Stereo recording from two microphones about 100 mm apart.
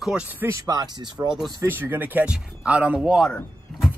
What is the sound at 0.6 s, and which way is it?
Speech, 40° right (ahead or behind).